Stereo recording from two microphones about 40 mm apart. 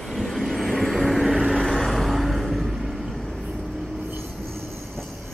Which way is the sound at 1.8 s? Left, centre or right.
Centre.